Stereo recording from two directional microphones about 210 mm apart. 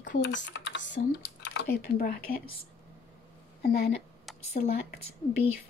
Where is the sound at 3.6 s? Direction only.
50° left (ahead or behind).